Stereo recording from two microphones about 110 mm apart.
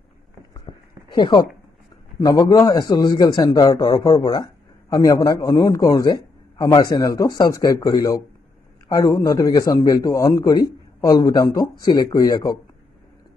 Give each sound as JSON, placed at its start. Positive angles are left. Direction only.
{"t": 1.1, "sound": "a man's voice", "side_deg": 45}